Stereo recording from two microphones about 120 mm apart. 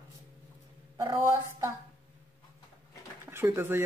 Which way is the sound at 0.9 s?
35° right (ahead or behind).